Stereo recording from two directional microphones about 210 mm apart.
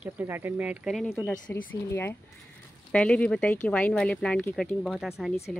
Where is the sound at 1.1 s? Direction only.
10° left (ahead or behind).